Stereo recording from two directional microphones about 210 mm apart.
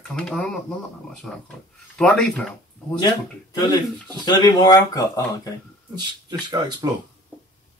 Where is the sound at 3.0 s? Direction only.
20° left (ahead or behind).